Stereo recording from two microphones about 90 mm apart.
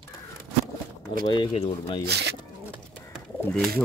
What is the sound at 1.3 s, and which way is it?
Speech, 75° left (ahead or behind).